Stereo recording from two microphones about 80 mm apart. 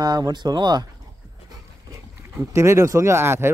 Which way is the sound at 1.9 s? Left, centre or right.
Right.